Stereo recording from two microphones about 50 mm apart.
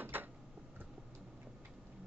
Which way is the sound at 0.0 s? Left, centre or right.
Right.